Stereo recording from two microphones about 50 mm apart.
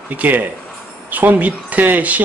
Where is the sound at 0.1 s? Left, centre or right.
Right.